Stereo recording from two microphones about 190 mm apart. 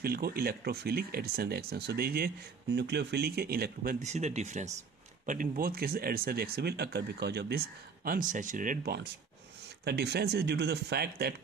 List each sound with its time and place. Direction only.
0.0 s speech: 55° right (ahead or behind)